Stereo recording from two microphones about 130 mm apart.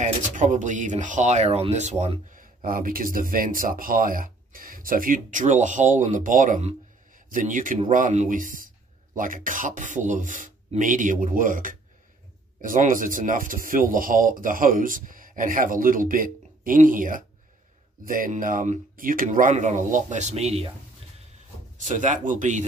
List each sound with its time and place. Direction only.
0.0 s speech: 75° right (ahead or behind)
7.9 s speech: 75° right (ahead or behind); by 20.6 s 55° right (ahead or behind)
21.7 s speech: 75° right (ahead or behind)